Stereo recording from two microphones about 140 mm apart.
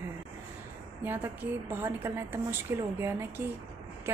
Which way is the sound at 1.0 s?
15° right (ahead or behind).